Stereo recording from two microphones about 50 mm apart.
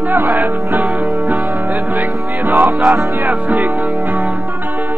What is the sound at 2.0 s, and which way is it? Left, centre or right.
Music, right.